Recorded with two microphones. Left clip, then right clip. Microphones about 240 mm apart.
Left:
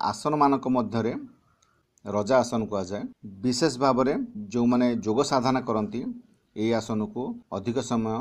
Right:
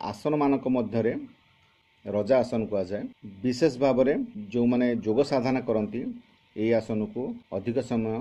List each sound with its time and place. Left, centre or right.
0.0 s speech: centre